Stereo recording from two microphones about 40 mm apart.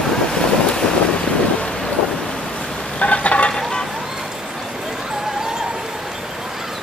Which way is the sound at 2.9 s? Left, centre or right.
Left.